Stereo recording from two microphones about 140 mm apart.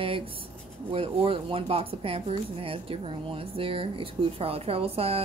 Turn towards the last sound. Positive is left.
turn(degrees=-45)  # may be behind; listen again after turning